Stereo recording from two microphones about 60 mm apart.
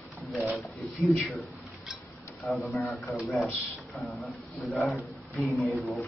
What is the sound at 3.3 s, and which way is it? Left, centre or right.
A man's voice, centre.